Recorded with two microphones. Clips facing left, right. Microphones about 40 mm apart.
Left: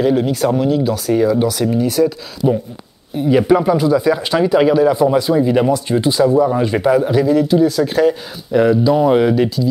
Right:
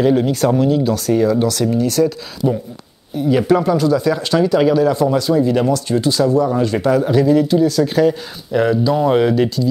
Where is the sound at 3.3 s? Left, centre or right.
Centre.